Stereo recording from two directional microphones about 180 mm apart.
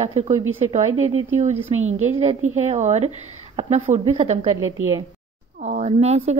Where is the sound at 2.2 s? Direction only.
40° right (ahead or behind).